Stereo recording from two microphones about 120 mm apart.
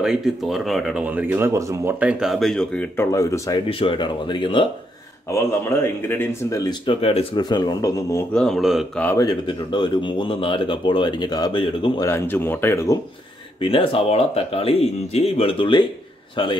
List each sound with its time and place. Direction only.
0.0 s speech: centre (ahead or behind)
1.0 s speech: 15° right (ahead or behind)
2.0 s speech: 10° right (ahead or behind)
3.0 s speech: 25° left (ahead or behind)
3.7 s speech: 45° left (ahead or behind)
5.3 s speech: 20° left (ahead or behind)
6.6 s speech: 35° left (ahead or behind)
7.0 s speech: 55° left (ahead or behind)
7.3 s speech: 35° left (ahead or behind)
8.3 s speech: 5° left (ahead or behind)
9.1 s speech: 30° left (ahead or behind)
9.5 s speech: 40° left (ahead or behind)
12.0 s speech: 20° left (ahead or behind)
13.6 s speech: 50° left (ahead or behind)